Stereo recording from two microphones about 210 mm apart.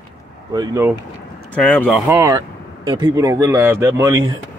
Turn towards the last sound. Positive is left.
turn(degrees=-15)  # may be behind; listen again after turning